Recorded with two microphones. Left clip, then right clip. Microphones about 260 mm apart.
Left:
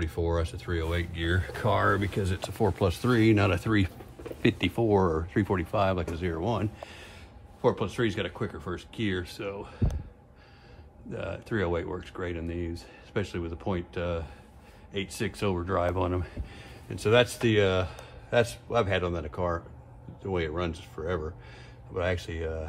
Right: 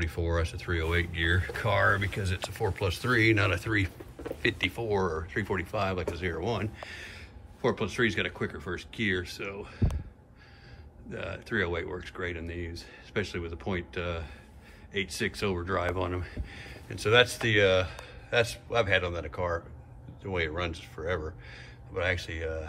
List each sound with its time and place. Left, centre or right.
0.0 s speech: centre
11.1 s speech: centre